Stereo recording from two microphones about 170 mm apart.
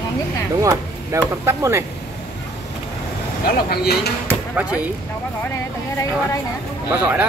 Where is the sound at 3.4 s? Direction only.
70° left (ahead or behind).